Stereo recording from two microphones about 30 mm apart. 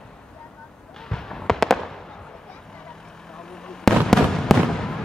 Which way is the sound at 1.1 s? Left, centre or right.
Centre.